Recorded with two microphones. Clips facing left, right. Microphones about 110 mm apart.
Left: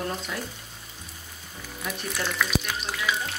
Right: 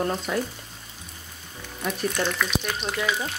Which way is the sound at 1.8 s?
Centre (ahead or behind).